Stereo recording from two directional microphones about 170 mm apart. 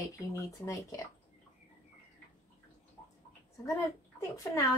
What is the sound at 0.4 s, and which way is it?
Speech, 20° left (ahead or behind).